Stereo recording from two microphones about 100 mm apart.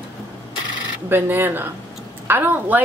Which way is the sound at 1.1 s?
20° right (ahead or behind).